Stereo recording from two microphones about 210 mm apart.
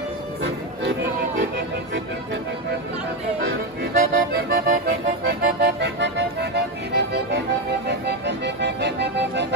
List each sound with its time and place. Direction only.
3.9 s accordion: 45° right (ahead or behind)
8.1 s music: 55° right (ahead or behind)